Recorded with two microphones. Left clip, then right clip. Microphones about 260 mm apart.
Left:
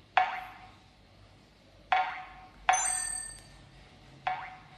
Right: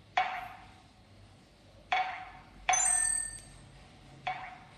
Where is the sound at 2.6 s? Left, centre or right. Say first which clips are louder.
Left 2 dB; left.